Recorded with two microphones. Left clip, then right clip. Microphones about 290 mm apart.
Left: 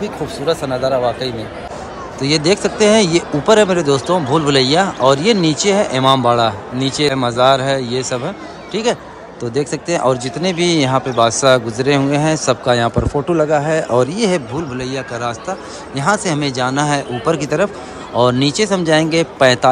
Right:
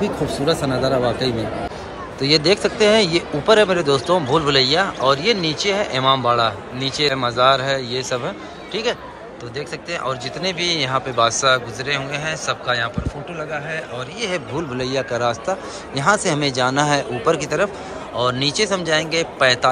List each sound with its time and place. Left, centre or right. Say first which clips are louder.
0.0 s a man's voice: even; centre